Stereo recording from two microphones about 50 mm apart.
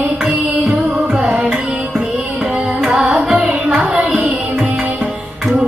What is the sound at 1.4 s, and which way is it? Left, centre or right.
Music, centre.